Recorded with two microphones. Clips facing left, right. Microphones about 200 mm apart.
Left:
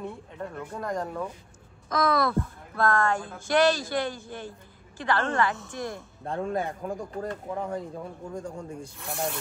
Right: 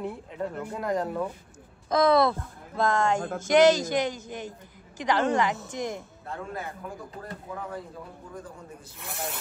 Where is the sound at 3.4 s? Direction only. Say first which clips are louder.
Right 4 dB; 20° right (ahead or behind).